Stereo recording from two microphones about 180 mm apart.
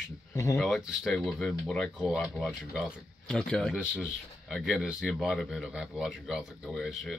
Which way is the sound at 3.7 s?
5° right (ahead or behind).